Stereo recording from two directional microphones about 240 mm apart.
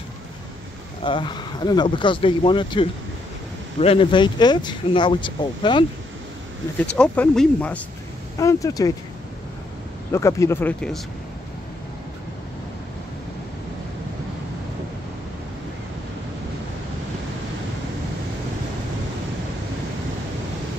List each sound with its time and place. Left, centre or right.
1.0 s speech: centre
7.0 s speech: centre
10.1 s speech: centre